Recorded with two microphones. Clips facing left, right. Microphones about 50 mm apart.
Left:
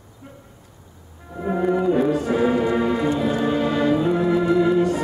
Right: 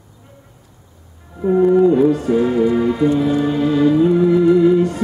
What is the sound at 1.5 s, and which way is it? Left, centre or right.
Music, centre.